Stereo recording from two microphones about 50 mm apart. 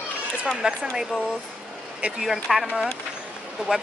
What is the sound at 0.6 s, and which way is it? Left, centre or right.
Speech, centre.